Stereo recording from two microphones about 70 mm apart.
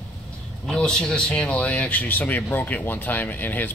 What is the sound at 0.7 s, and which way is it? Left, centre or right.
Speech, centre.